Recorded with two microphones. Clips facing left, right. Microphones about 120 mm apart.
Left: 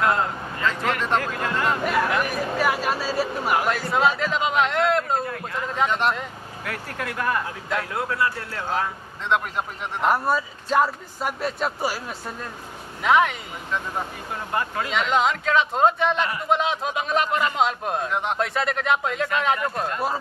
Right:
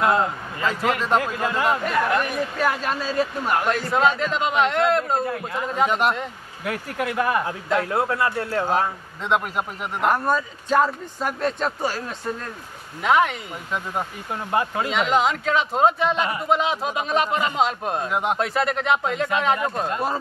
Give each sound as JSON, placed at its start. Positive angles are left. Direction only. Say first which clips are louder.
{"t": 0.0, "sound": "speech", "louder": "right 2 dB", "side_deg": -10}
{"t": 2.1, "sound": "speech", "louder": "even", "side_deg": 5}
{"t": 7.9, "sound": "speech", "louder": "right 3 dB", "side_deg": -30}
{"t": 9.2, "sound": "speech", "louder": "right 1 dB", "side_deg": -10}
{"t": 10.1, "sound": "speech", "louder": "right 1 dB", "side_deg": 10}
{"t": 13.0, "sound": "speech", "louder": "even", "side_deg": 0}
{"t": 14.5, "sound": "speech", "louder": "right 4 dB", "side_deg": -20}
{"t": 14.9, "sound": "speech", "louder": "even", "side_deg": 0}